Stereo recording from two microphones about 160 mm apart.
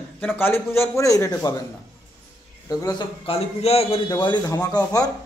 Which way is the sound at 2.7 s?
25° left (ahead or behind).